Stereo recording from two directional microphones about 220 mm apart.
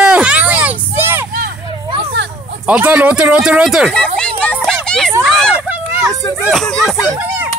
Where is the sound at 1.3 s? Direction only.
40° right (ahead or behind).